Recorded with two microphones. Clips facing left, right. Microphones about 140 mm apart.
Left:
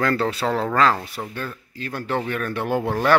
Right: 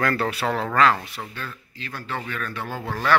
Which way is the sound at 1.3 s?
45° left (ahead or behind).